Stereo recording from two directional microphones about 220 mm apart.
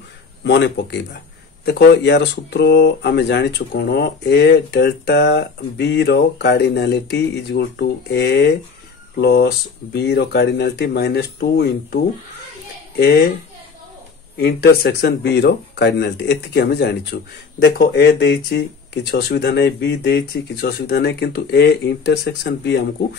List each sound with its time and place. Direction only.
0.4 s speech: 50° left (ahead or behind)
14.3 s speech: 45° left (ahead or behind)